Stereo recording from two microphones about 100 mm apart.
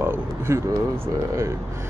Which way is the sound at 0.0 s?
20° right (ahead or behind).